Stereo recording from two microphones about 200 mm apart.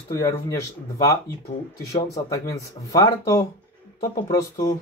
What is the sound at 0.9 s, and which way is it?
Speech, 15° left (ahead or behind).